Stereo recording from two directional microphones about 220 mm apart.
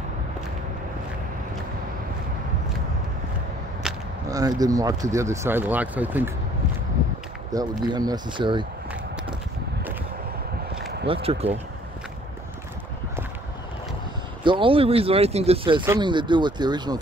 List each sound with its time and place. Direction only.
3.8 s single-lens reflex camera: 5° right (ahead or behind)
4.3 s speech: 15° right (ahead or behind)
7.5 s speech: 20° right (ahead or behind)
11.2 s speech: 30° right (ahead or behind)
14.4 s speech: 20° right (ahead or behind)